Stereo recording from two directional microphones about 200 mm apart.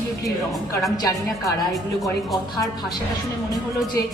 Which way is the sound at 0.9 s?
20° left (ahead or behind).